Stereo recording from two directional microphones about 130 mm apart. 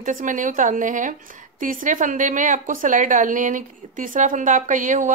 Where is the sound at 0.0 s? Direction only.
85° right.